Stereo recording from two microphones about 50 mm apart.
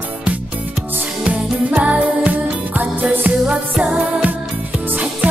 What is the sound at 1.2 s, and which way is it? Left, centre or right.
Music, right.